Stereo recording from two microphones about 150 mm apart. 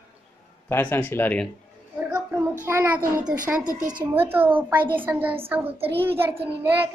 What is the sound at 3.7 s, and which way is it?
Speech, 65° right (ahead or behind).